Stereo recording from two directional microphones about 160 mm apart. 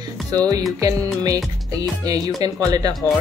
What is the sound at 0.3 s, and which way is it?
Speech, 25° right (ahead or behind).